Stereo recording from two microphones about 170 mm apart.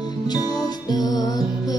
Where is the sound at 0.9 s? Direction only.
20° left (ahead or behind).